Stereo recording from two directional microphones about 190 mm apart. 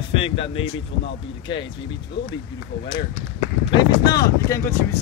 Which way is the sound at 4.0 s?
20° left (ahead or behind).